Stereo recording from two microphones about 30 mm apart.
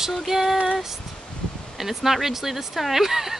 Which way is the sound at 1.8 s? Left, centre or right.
Centre.